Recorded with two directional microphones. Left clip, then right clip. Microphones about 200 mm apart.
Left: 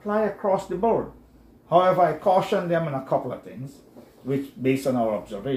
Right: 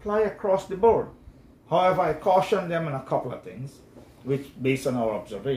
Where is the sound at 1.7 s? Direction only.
15° right (ahead or behind).